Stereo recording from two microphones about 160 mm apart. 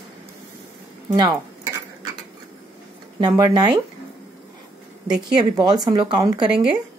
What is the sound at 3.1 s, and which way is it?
Speech, 25° right (ahead or behind).